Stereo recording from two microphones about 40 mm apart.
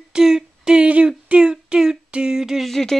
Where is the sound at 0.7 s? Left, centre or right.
Right; by 2.7 s centre.